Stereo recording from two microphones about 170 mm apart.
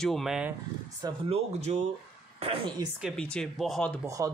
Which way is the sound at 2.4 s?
30° right (ahead or behind).